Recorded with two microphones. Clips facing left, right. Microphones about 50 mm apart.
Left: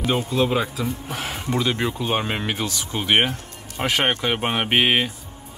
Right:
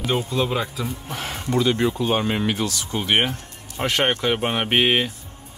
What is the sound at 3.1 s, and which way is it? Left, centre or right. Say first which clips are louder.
Speech: left 2 dB; centre.